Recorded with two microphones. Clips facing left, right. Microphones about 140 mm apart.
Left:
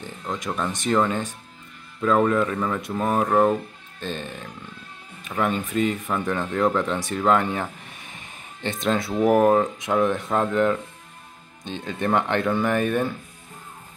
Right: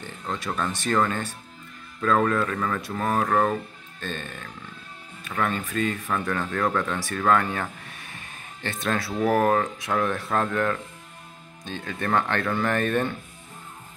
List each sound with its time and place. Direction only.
0.0 s speech: 15° left (ahead or behind)